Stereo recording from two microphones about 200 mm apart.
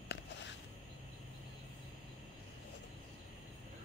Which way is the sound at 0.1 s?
60° left (ahead or behind).